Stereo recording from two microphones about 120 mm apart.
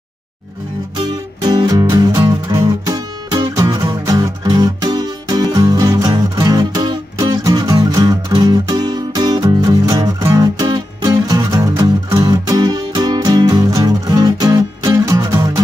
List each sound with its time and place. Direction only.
0.9 s music: 35° right (ahead or behind)